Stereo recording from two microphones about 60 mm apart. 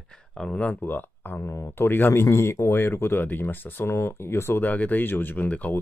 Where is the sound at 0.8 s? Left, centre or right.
Left.